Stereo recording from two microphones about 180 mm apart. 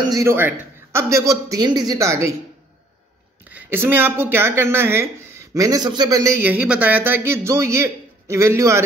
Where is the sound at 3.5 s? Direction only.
10° right (ahead or behind).